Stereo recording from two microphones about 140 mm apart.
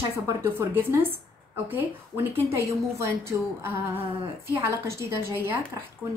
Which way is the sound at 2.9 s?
20° right (ahead or behind).